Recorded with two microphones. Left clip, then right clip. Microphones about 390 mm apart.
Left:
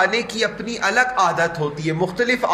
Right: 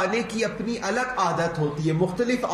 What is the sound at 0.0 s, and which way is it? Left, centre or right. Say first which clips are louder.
A man's voice: left 6 dB; left.